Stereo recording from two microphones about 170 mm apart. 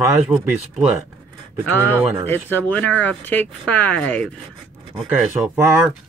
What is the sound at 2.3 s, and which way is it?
Speech, 10° left (ahead or behind).